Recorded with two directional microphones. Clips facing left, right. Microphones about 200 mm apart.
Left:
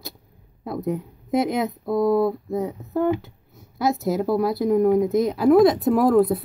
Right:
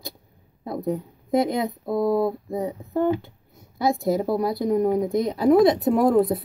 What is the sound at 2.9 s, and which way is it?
Speech, 5° left (ahead or behind).